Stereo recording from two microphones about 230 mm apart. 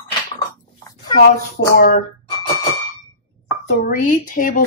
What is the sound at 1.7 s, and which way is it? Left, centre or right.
Speech, left.